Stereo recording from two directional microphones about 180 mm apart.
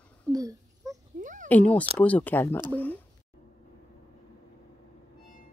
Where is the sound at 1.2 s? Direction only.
45° right (ahead or behind).